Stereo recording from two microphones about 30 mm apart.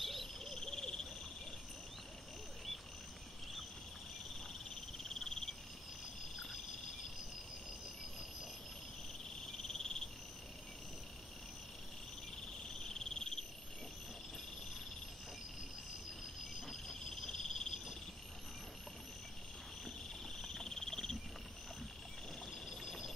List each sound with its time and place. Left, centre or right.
0.0 s a sound: centre
0.6 s a sound: centre
4.9 s frog: centre
9.7 s cricket: left
12.9 s cricket: left
16.6 s cricket: centre
17.3 s cricket: centre
20.4 s frog: centre
22.5 s a sound: centre